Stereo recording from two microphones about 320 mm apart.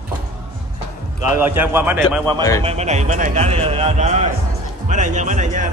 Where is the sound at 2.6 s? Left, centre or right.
Right.